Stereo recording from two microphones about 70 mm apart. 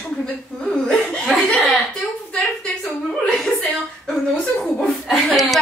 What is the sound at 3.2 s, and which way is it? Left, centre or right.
A woman's voice, centre.